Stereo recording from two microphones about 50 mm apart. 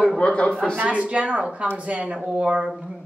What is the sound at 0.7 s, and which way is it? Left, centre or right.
Speech, right.